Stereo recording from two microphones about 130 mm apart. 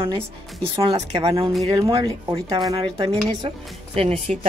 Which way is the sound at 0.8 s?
55° right (ahead or behind).